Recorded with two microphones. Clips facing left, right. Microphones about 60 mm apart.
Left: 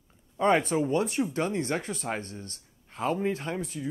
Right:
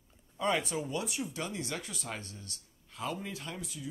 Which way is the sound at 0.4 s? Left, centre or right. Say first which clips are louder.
Left 8 dB; left.